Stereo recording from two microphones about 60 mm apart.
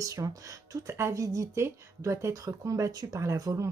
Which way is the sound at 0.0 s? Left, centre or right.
Right.